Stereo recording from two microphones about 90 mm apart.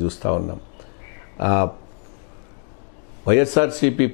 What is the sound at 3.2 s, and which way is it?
Speech, 15° left (ahead or behind).